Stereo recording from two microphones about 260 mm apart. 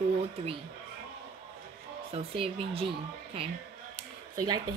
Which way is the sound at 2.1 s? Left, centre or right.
Right.